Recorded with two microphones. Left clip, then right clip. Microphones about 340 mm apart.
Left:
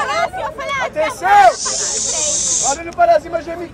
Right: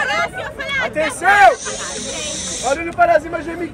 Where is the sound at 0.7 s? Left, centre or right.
Left.